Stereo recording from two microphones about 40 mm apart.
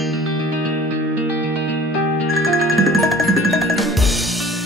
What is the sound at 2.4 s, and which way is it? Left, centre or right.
Music, centre.